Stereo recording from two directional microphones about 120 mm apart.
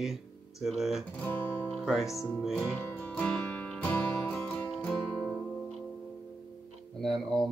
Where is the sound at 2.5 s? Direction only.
15° left (ahead or behind).